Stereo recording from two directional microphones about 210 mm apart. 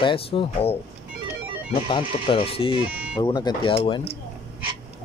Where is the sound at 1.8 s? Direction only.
25° left (ahead or behind).